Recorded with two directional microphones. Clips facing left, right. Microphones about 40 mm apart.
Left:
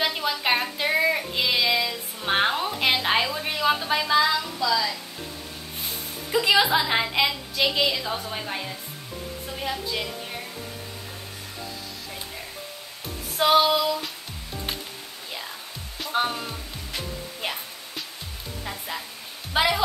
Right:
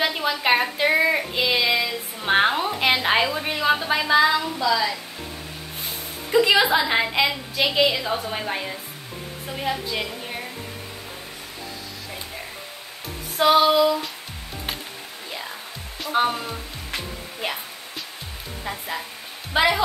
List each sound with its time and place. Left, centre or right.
0.0 s child singing: centre
6.3 s a woman's voice: centre
13.4 s a woman's voice: centre
16.1 s a woman's voice: centre
19.5 s speech: centre